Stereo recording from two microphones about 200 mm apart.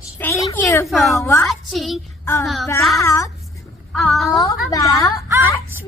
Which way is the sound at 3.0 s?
15° left (ahead or behind).